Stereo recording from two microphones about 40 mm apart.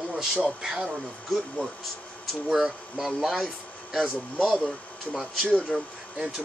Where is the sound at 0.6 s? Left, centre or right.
Centre.